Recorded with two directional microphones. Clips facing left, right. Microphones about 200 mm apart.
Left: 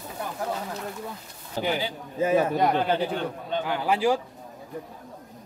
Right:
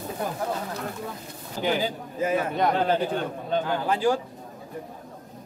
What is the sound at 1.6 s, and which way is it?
Speech, 45° right (ahead or behind).